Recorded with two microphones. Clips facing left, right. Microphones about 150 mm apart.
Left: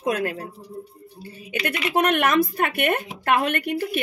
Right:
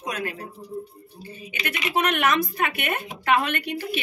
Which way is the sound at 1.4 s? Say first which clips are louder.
Left 5 dB; 50° left (ahead or behind).